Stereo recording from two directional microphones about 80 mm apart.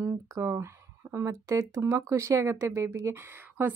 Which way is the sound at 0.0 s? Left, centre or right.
Right.